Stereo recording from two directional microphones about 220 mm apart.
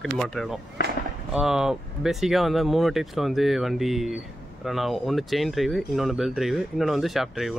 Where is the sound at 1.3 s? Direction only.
Centre (ahead or behind).